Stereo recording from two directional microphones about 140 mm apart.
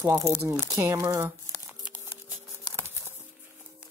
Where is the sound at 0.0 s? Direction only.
20° right (ahead or behind).